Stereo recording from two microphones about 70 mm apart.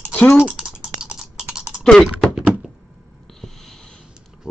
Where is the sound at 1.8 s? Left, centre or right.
Centre.